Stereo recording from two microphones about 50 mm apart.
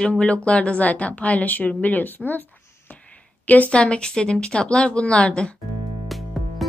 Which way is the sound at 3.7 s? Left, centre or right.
Left.